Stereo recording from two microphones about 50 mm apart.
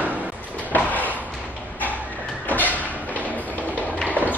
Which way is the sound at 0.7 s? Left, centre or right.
Left.